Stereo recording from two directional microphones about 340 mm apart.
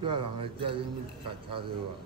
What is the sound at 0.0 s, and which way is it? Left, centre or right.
Speech, centre.